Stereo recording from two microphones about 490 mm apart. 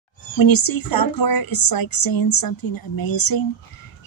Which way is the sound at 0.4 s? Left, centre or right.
Left.